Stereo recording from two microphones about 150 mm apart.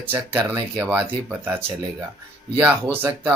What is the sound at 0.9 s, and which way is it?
Speech, 15° right (ahead or behind).